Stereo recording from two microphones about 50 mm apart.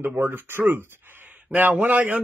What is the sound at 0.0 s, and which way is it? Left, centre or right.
Speech, right.